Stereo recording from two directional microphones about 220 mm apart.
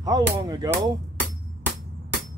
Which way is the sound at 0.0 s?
15° right (ahead or behind).